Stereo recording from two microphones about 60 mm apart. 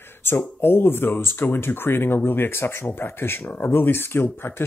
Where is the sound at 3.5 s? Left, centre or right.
Left.